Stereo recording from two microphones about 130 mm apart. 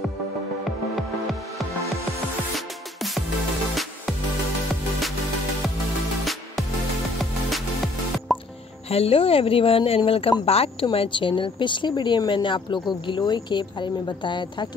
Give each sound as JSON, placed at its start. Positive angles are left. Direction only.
{"t": 2.5, "sound": "music", "side_deg": 0}
{"t": 7.2, "sound": "music", "side_deg": 0}
{"t": 8.8, "sound": "speech", "side_deg": 50}